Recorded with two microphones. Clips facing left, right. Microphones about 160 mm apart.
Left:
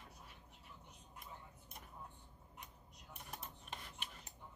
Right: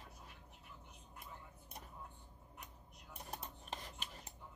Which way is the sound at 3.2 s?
35° right (ahead or behind).